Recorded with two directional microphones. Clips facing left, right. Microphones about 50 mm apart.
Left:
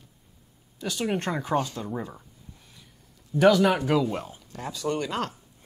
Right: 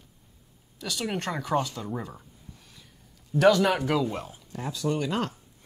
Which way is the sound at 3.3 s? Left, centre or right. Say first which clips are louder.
Left 1 dB; centre.